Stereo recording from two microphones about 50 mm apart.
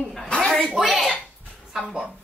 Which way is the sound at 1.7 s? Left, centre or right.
Centre.